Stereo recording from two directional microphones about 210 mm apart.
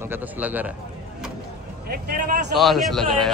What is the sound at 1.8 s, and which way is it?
Speech, 45° right (ahead or behind).